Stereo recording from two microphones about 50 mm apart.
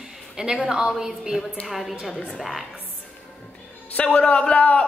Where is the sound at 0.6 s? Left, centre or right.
Centre.